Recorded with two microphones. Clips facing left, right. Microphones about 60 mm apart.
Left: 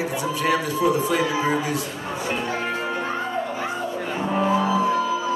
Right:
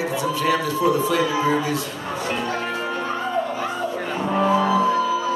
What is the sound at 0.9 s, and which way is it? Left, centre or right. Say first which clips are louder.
Speech: right 1 dB; left.